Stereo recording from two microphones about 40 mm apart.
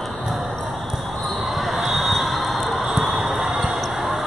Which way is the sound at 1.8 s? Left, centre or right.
Centre.